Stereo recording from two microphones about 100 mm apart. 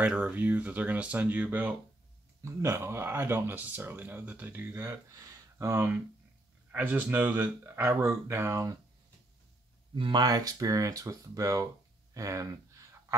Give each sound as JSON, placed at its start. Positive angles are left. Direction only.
{"t": 0.0, "sound": "speech", "side_deg": -15}
{"t": 2.4, "sound": "speech", "side_deg": -30}
{"t": 4.8, "sound": "speech", "side_deg": -30}
{"t": 9.9, "sound": "speech", "side_deg": -55}
{"t": 10.2, "sound": "speech", "side_deg": -40}